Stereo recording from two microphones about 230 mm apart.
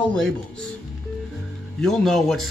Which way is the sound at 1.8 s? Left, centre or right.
Centre.